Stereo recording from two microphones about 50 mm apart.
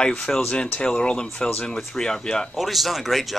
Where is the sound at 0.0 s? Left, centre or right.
Centre.